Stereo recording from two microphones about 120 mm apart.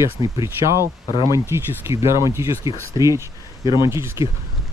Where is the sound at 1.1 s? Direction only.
40° left (ahead or behind).